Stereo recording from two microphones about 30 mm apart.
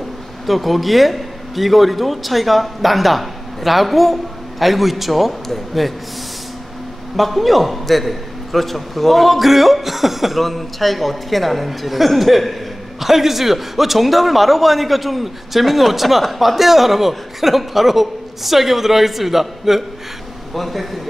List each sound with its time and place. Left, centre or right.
0.5 s a man's voice: centre
7.2 s a man's voice: centre